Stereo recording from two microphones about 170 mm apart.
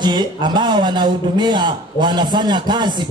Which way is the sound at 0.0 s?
25° right (ahead or behind).